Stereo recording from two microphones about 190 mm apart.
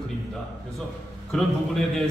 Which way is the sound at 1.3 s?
Centre (ahead or behind).